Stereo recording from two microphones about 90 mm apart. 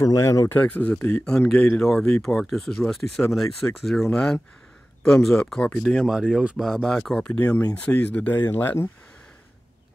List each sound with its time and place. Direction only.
0.0 s speech: 35° left (ahead or behind)
0.6 s speech: 20° left (ahead or behind)
6.0 s speech: 5° right (ahead or behind)
7.0 s speech: 10° left (ahead or behind)